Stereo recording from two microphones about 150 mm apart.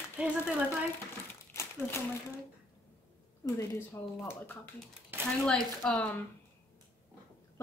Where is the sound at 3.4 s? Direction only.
20° left (ahead or behind).